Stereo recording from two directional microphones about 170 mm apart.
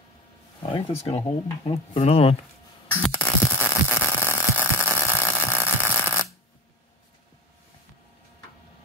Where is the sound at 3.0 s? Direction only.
10° left (ahead or behind).